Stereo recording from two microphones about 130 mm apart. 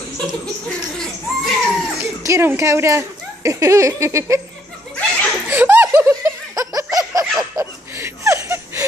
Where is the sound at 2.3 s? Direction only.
20° right (ahead or behind).